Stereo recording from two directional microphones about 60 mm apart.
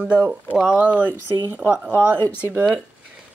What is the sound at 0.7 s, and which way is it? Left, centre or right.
Speech, right.